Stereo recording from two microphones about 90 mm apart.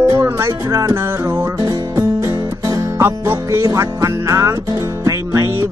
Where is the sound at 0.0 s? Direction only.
30° right (ahead or behind).